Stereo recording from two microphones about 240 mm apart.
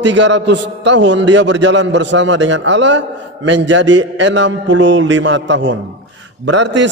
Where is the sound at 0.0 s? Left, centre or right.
Right.